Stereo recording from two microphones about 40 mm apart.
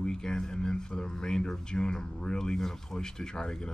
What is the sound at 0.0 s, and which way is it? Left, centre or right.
Speech, centre.